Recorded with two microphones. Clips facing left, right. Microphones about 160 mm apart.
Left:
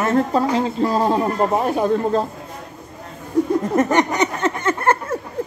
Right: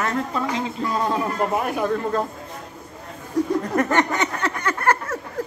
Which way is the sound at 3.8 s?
20° left (ahead or behind).